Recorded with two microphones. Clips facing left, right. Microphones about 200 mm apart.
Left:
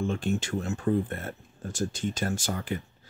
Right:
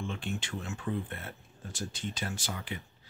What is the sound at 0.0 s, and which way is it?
Speech, 45° left (ahead or behind).